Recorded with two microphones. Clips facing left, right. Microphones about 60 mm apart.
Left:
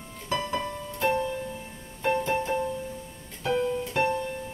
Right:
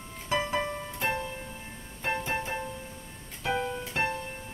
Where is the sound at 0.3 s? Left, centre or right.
Right.